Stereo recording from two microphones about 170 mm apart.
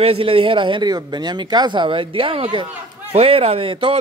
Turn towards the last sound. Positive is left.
turn(degrees=-30)  # may be behind; listen again after turning